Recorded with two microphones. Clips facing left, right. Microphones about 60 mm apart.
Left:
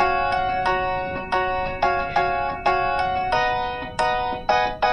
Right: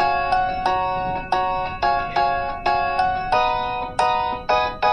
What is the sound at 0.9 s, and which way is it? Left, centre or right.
Music, right.